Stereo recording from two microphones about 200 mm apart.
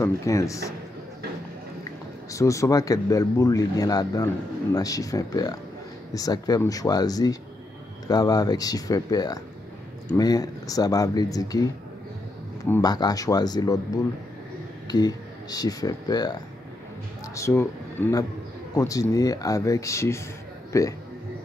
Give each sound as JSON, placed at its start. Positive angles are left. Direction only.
{"t": 0.0, "sound": "speech", "side_deg": 15}
{"t": 2.3, "sound": "speech", "side_deg": 15}
{"t": 14.9, "sound": "speech", "side_deg": 20}
{"t": 17.4, "sound": "speech", "side_deg": 15}